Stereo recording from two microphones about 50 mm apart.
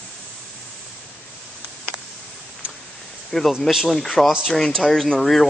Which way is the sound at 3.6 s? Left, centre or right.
Centre.